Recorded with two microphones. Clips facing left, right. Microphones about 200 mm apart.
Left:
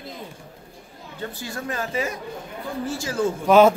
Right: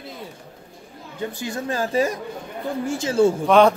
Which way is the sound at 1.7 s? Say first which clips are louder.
Right 6 dB; 35° right (ahead or behind).